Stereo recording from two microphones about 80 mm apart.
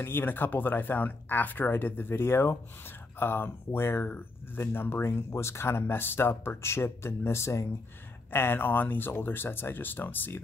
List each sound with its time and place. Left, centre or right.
0.0 s speech: left